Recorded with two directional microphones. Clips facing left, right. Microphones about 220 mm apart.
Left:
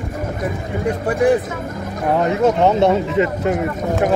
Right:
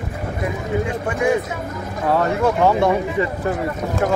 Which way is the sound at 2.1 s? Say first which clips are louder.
Left 2 dB; 20° left (ahead or behind).